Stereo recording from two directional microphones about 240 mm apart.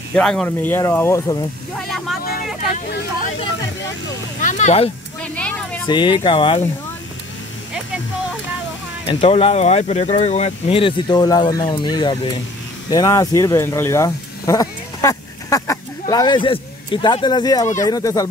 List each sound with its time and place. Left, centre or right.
0.1 s speech: centre
1.8 s a sound: centre
4.4 s speech: left
5.2 s a sound: centre
5.9 s speech: centre
9.0 s speech: left